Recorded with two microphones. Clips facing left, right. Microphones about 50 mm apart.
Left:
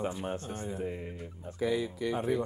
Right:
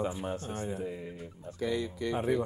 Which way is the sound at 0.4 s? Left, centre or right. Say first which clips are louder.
Right 2 dB; right.